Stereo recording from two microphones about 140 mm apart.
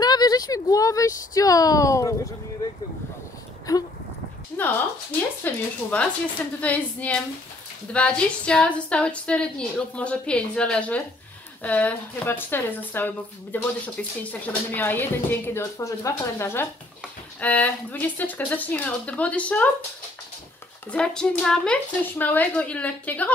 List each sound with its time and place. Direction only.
0.0 s speech: 30° left (ahead or behind)
3.7 s a woman's voice: 25° left (ahead or behind)
20.9 s a woman's voice: 5° left (ahead or behind)